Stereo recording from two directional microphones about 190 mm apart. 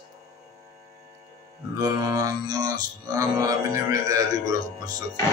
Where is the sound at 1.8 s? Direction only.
20° right (ahead or behind).